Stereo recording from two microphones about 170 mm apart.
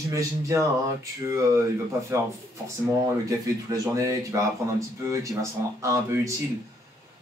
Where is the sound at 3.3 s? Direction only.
20° right (ahead or behind).